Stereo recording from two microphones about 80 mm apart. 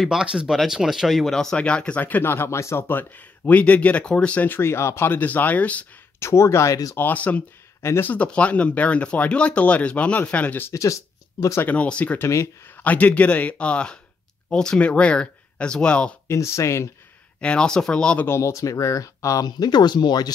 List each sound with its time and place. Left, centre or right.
0.0 s speech: centre
6.1 s speech: left
7.0 s speech: left
7.8 s speech: left
8.1 s speech: centre
10.7 s speech: left
11.6 s speech: centre
12.2 s speech: left
12.7 s speech: centre
16.3 s speech: left
17.4 s speech: centre
18.2 s speech: left
19.4 s speech: left